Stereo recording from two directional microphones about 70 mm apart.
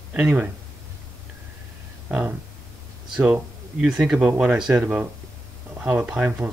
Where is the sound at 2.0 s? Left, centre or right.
Right.